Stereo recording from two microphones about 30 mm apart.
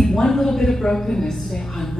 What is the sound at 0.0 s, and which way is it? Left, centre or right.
A woman's voice, centre.